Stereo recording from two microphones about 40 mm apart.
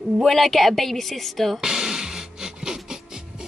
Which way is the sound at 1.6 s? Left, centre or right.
Centre.